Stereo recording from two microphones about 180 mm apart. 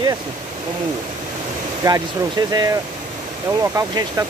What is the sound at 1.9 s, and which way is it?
Speech, 20° right (ahead or behind).